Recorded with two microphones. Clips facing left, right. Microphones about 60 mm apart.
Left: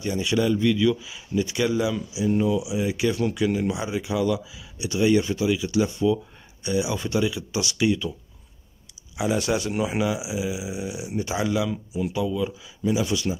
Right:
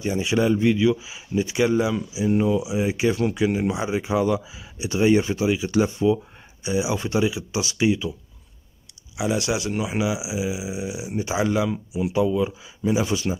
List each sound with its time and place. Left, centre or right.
0.0 s speech: right
6.6 s speech: centre
9.1 s speech: centre
10.0 s speech: centre